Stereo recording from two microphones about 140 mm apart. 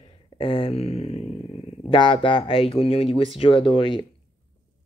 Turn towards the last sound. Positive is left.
turn(degrees=40)  # may be behind; listen again after turning